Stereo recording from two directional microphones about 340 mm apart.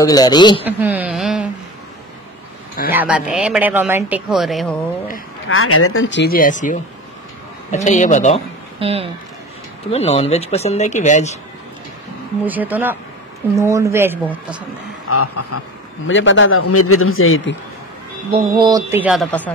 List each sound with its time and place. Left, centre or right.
0.0 s a man's voice: centre
0.7 s speech: centre
2.9 s speech: centre
5.5 s a man's voice: left
8.7 s speech: centre
9.8 s speech: centre
12.4 s speech: centre
15.0 s a man's voice: left
18.3 s speech: centre